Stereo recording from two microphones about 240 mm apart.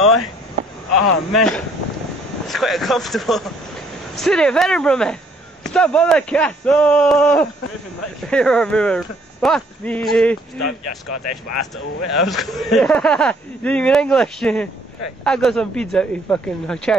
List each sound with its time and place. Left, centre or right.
0.0 s speech: centre
1.3 s speech: centre
11.1 s speech: left
12.1 s speech: centre